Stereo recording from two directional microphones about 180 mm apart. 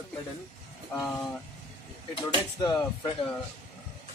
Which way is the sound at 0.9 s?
15° left (ahead or behind).